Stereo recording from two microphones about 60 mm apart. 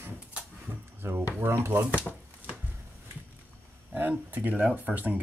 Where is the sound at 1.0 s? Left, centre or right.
Right.